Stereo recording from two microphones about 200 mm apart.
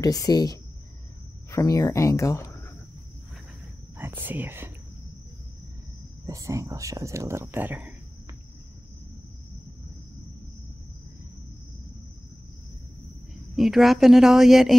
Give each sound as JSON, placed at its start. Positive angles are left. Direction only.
{"t": 0.0, "sound": "speech", "side_deg": 20}
{"t": 3.9, "sound": "speech", "side_deg": -10}
{"t": 6.2, "sound": "speech", "side_deg": -15}
{"t": 13.3, "sound": "speech", "side_deg": 0}